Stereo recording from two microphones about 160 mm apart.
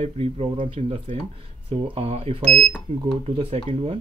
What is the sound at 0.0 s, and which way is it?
Speech, 40° right (ahead or behind).